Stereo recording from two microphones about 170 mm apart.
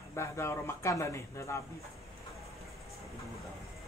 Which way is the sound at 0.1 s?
15° left (ahead or behind).